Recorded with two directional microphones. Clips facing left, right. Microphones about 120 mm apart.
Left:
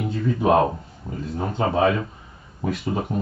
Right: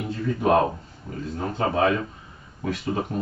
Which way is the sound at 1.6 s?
15° left (ahead or behind).